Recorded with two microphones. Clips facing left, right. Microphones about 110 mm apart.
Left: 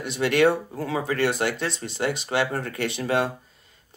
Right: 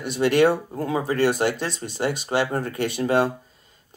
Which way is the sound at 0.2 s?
25° right (ahead or behind).